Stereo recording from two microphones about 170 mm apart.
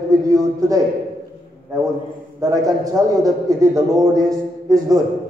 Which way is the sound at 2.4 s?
20° right (ahead or behind).